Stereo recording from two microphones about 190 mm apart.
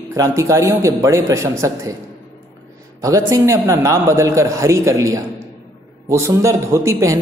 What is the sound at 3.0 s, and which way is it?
A man's voice, 15° right (ahead or behind).